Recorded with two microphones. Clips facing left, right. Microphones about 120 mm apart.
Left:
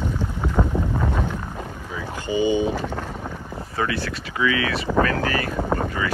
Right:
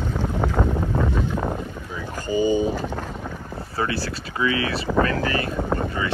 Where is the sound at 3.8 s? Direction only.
30° right (ahead or behind).